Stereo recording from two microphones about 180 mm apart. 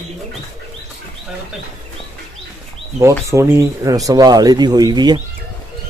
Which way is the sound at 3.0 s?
15° right (ahead or behind).